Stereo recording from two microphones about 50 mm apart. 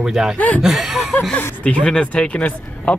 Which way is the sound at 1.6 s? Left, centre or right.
Left.